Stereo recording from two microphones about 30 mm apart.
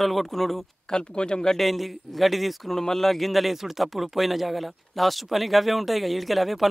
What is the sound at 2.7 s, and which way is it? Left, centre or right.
Speech, centre.